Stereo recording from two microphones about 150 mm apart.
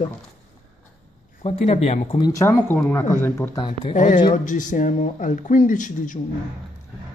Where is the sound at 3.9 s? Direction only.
55° left (ahead or behind).